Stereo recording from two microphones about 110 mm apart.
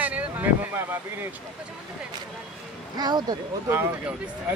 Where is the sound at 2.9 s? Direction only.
40° right (ahead or behind).